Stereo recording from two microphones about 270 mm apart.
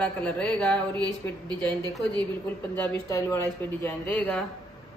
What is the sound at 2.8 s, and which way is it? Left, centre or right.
Speech, centre.